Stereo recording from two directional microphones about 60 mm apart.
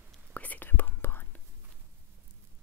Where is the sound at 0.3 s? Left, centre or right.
Left.